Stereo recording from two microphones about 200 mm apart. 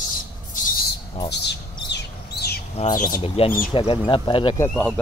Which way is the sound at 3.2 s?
30° left (ahead or behind).